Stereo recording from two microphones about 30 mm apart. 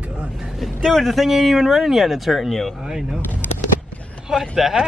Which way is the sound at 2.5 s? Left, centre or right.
Centre.